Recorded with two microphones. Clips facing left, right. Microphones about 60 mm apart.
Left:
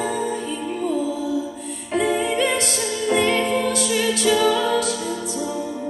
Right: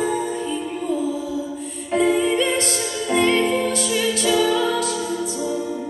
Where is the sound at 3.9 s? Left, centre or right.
Left.